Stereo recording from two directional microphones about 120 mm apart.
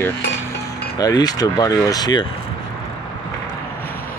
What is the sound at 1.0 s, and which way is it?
Speech, 35° left (ahead or behind).